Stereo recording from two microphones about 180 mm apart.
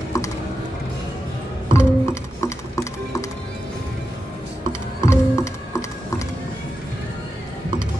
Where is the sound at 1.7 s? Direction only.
15° left (ahead or behind).